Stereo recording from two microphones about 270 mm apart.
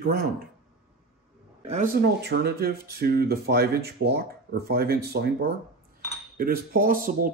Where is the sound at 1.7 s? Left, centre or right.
Right.